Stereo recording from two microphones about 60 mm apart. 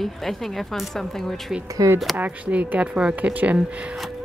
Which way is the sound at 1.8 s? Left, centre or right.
Right.